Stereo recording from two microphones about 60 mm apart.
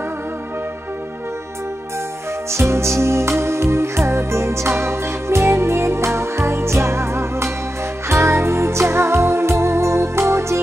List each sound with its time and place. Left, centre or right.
2.5 s music: right